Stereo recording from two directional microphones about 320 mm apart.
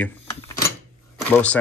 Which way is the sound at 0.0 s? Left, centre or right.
Centre.